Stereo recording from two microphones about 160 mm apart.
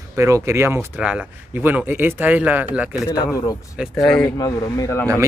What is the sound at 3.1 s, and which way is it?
Speech, 25° left (ahead or behind).